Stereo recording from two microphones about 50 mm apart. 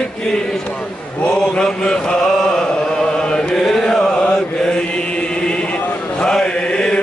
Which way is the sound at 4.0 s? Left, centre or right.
Centre.